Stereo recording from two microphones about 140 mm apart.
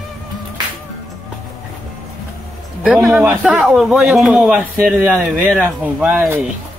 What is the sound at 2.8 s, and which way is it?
A man's voice, 5° right (ahead or behind).